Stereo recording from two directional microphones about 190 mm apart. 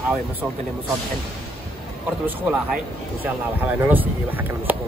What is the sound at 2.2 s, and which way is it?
Speech, 10° right (ahead or behind).